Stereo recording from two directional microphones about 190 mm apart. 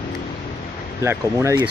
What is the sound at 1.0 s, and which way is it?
Speech, 15° right (ahead or behind).